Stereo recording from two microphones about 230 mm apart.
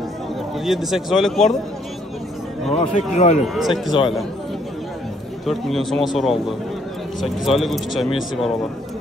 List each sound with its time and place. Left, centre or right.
0.7 s speech: centre
2.8 s speech: left
3.4 s speech: centre
5.4 s speech: centre